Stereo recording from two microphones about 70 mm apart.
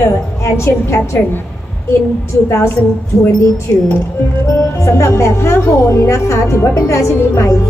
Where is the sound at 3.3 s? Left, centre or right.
Left.